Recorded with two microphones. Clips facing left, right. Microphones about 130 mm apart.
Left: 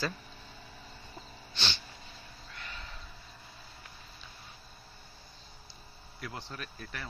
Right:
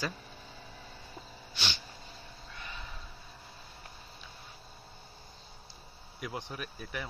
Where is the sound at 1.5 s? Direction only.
10° right (ahead or behind).